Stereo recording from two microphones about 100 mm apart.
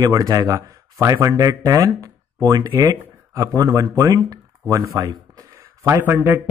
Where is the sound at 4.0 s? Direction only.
35° right (ahead or behind).